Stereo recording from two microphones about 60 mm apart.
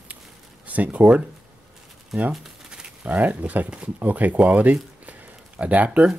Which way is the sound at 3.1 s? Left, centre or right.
Right.